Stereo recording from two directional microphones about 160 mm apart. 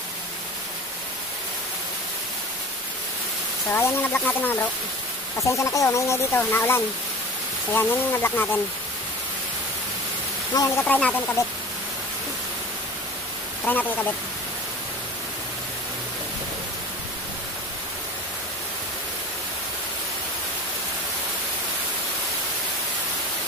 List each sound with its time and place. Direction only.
3.7 s speech: 15° left (ahead or behind)
10.5 s speech: 20° left (ahead or behind)
10.9 s speech: 10° left (ahead or behind)
11.4 s speech: 20° left (ahead or behind)
13.7 s speech: 10° left (ahead or behind)